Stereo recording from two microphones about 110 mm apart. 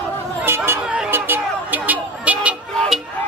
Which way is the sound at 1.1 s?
20° right (ahead or behind).